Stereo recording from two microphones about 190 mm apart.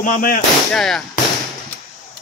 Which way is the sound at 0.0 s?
45° left (ahead or behind).